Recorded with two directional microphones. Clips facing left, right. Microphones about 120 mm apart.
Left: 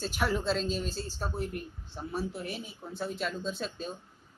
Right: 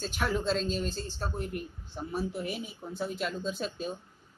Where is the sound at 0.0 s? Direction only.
5° left (ahead or behind).